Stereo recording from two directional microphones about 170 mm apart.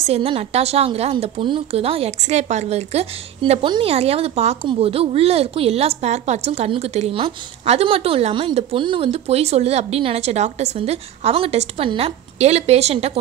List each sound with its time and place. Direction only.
0.0 s a woman's voice: 35° right (ahead or behind)